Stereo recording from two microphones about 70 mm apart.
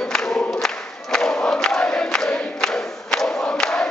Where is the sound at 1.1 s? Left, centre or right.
Centre.